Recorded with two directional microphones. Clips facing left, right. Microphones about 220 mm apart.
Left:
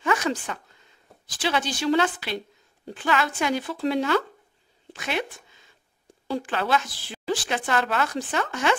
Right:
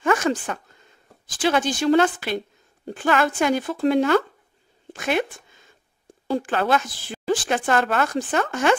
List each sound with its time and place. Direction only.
0.0 s a woman's voice: 50° right (ahead or behind)